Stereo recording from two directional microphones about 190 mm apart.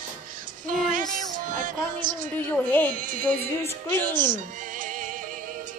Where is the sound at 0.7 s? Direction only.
45° right (ahead or behind).